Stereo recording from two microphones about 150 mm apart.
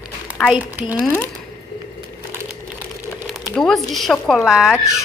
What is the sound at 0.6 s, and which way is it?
Speech, 10° right (ahead or behind).